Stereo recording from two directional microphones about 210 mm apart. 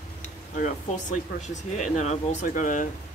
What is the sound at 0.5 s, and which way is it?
Speech, 35° left (ahead or behind).